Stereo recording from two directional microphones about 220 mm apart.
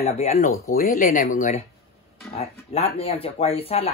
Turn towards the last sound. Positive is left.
turn(degrees=25)  # may be behind; listen again after turning